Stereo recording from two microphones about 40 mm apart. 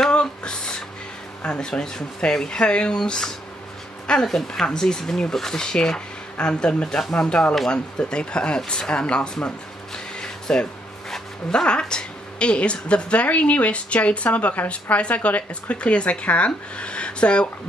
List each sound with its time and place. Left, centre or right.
0.1 s a sound: left
1.4 s speech: left
9.9 s music: centre
11.8 s a woman's voice: left